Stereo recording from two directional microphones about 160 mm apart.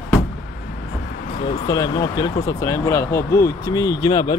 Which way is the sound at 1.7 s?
25° left (ahead or behind).